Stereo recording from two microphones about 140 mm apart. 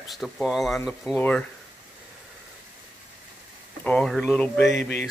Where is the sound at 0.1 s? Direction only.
Centre (ahead or behind).